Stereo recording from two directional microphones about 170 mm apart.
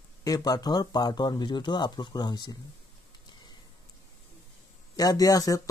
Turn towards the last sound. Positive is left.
turn(degrees=20)  # may be behind; listen again after turning